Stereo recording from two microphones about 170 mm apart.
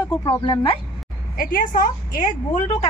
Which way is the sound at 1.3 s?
55° left (ahead or behind).